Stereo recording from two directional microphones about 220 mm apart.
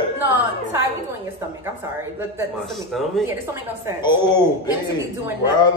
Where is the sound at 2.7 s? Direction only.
Centre (ahead or behind).